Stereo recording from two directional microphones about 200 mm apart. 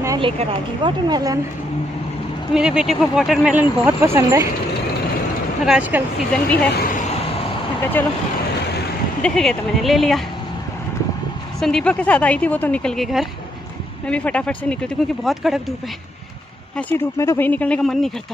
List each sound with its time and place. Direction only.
0.0 s a sound: 15° right (ahead or behind)
0.4 s speech: 20° right (ahead or behind)
2.5 s speech: 5° right (ahead or behind)
5.7 s speech: 10° right (ahead or behind)
6.3 s speech: 5° left (ahead or behind)
9.2 s speech: 5° left (ahead or behind)
11.6 s speech: 5° left (ahead or behind)
16.7 s speech: 15° left (ahead or behind)